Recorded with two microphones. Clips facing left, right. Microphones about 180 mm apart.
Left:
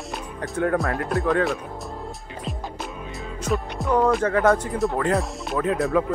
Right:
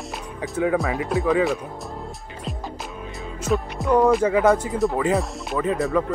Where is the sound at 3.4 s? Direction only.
Centre (ahead or behind).